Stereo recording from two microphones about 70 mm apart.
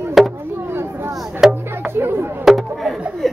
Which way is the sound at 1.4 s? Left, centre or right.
Centre.